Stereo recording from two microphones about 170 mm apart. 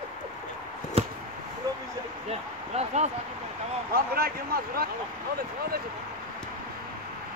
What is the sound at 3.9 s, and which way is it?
Speech, 60° right (ahead or behind).